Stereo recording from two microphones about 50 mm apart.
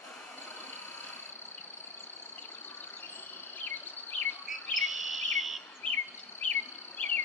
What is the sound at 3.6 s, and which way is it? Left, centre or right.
Insect, left.